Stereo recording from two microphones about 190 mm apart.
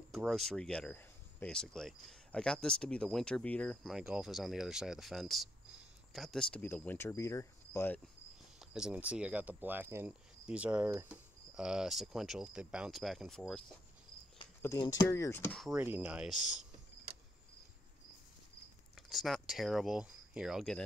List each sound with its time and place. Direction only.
0.1 s speech: centre (ahead or behind)
8.5 s speech: 5° right (ahead or behind)
14.6 s speech: 15° left (ahead or behind)
15.6 s speech: 5° right (ahead or behind)
19.0 s speech: centre (ahead or behind)